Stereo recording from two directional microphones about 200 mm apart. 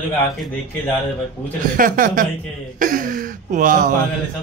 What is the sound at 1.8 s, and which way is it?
A man's voice, 45° right (ahead or behind).